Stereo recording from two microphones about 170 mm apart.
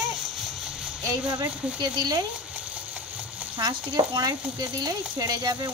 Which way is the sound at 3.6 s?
25° right (ahead or behind).